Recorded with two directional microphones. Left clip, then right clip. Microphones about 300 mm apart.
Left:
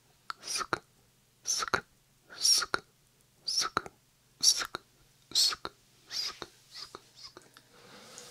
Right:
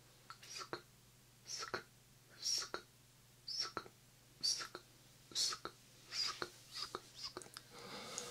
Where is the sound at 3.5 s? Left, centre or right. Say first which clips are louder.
Left 12 dB; left.